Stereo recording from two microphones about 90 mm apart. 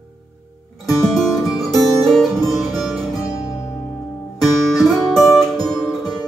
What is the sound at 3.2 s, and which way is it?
Music, 40° left (ahead or behind).